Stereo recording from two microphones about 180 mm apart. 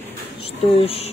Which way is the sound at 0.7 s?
30° left (ahead or behind).